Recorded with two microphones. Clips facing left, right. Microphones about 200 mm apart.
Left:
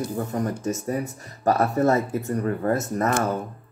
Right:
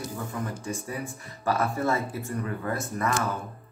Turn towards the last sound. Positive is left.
turn(degrees=40)  # may be behind; listen again after turning